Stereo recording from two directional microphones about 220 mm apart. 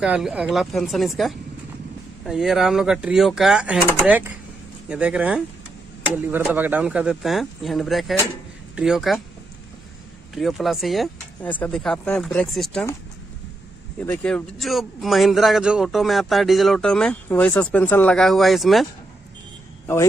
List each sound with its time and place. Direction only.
0.0 s a man's voice: 5° right (ahead or behind)
10.3 s a man's voice: centre (ahead or behind)
13.9 s a man's voice: 5° left (ahead or behind)